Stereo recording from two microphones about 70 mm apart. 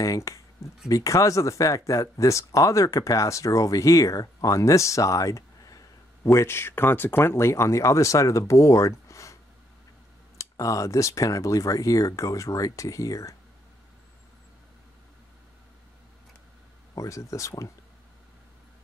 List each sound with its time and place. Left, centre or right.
0.0 s speech: left
6.2 s speech: left
16.9 s speech: left